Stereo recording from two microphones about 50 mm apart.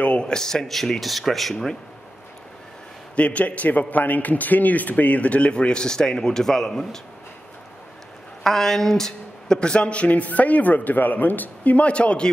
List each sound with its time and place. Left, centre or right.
0.0 s speech: left; by 1.8 s centre
3.2 s a man's voice: left; by 7.0 s centre
8.5 s a man's voice: centre; by 12.3 s left